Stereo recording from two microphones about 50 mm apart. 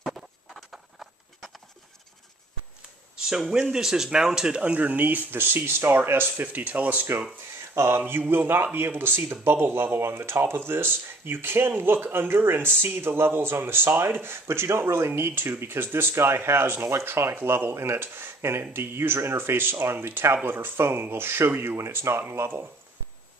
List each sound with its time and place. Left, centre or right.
0.7 s a sound: centre
3.2 s speech: centre
4.7 s speech: right
7.7 s a sound: right
8.0 s speech: right
21.7 s speech: right